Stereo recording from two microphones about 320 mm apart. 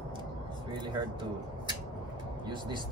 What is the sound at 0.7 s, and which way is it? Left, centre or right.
Speech, centre.